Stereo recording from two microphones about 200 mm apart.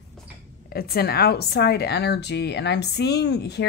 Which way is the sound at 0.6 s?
50° left (ahead or behind).